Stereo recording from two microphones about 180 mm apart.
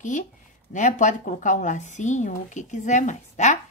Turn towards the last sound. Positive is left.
turn(degrees=40)  # may be behind; listen again after turning